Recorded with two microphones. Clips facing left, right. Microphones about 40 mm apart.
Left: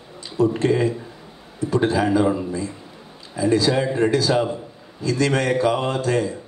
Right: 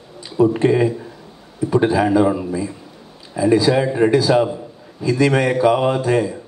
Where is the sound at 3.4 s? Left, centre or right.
Centre.